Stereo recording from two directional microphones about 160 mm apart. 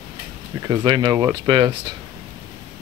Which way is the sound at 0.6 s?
30° right (ahead or behind).